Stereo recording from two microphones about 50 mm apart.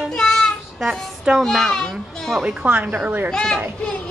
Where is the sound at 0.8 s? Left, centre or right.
Centre.